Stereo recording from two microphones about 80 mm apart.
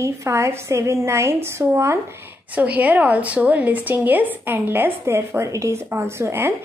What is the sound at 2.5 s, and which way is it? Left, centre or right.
A woman's voice, centre.